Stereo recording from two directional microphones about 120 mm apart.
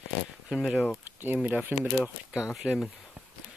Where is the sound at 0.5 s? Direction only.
5° right (ahead or behind).